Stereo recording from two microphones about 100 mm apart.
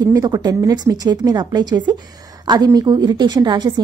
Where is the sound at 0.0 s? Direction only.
40° right (ahead or behind).